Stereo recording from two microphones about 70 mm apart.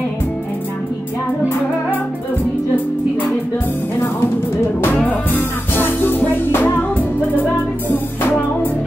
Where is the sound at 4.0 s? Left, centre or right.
Left.